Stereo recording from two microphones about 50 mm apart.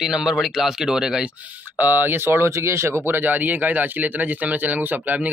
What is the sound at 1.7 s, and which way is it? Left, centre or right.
Speech, right.